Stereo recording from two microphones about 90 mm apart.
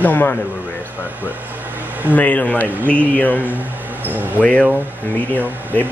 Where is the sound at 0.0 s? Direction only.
20° left (ahead or behind).